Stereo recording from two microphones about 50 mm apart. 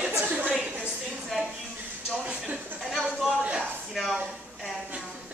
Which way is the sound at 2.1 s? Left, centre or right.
Right.